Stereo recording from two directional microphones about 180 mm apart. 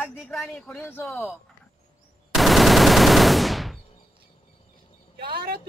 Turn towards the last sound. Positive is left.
turn(degrees=-60)  # may be behind; listen again after turning